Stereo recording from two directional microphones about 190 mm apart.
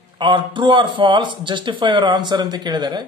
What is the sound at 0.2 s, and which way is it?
A man's voice, 25° right (ahead or behind).